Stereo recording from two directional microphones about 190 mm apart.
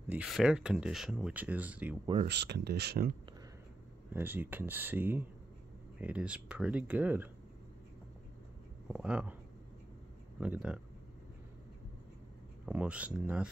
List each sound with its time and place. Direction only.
0.1 s speech: 5° right (ahead or behind)
2.2 s speech: 60° right (ahead or behind)
4.1 s speech: 10° right (ahead or behind)
8.8 s speech: 5° right (ahead or behind)
10.4 s speech: 5° right (ahead or behind)
12.6 s speech: 5° right (ahead or behind)